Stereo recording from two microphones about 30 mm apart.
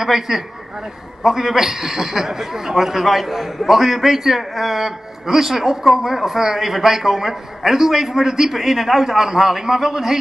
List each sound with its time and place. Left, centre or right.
0.0 s a man's voice: centre